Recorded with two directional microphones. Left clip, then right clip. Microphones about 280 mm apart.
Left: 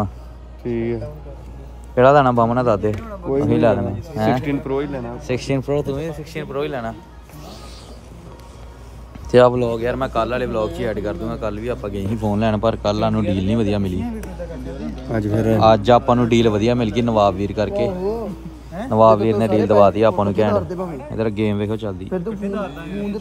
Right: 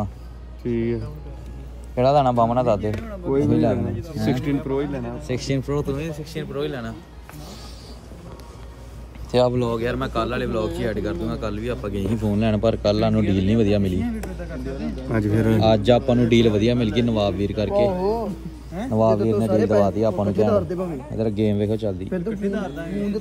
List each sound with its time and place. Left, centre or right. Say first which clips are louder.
0.7 s speech: left 2 dB; centre
2.0 s speech: left 5 dB; left
2.9 s speech: left 2 dB; centre
9.6 s speech: left 3 dB; centre
18.9 s speech: left 6 dB; left
21.7 s speech: left 1 dB; centre